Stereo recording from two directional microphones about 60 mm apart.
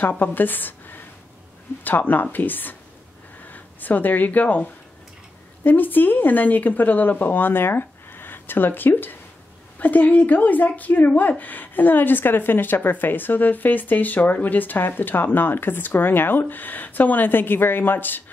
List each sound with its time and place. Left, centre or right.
0.2 s a woman's voice: left